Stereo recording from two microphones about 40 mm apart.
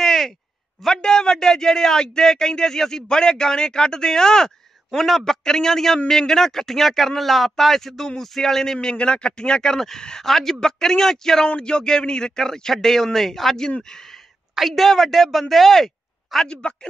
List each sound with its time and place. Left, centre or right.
0.0 s a sound: centre
0.8 s a man's voice: centre
4.9 s a man's voice: centre
8.7 s a man's voice: left
11.4 s a man's voice: left; by 13.6 s centre
14.7 s speech: centre
16.4 s speech: left